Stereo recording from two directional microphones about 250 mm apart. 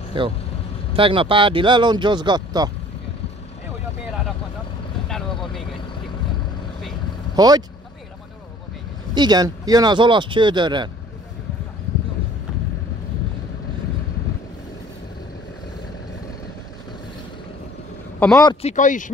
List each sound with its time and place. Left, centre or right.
0.2 s speech: centre
5.0 s vehicle: centre
7.3 s speech: centre
9.1 s speech: centre
18.2 s speech: centre; by 19.1 s left